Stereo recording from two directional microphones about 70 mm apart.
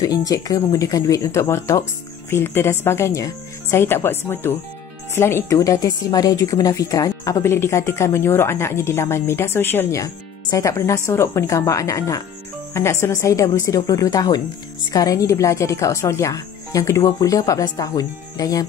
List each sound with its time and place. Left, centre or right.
0.0 s a woman's voice: left
3.7 s a woman's voice: left
5.5 s speech: left
7.4 s a woman's voice: left
9.9 s speech: left
12.7 s speech: left